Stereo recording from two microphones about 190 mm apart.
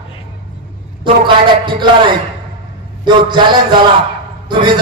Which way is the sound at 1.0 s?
25° right (ahead or behind).